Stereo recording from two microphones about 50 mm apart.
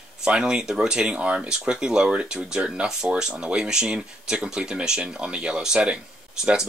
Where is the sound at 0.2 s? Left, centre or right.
Centre.